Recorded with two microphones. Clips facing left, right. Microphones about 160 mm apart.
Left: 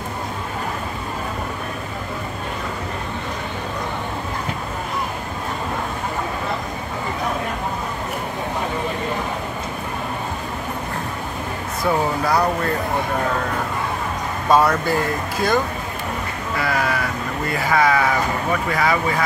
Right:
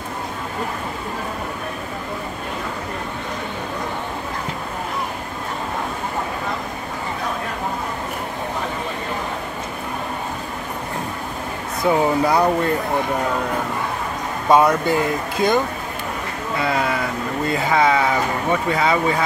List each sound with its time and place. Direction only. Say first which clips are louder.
11.8 s speech: right 3 dB; 20° right (ahead or behind)
14.5 s speech: right 2 dB; 20° right (ahead or behind)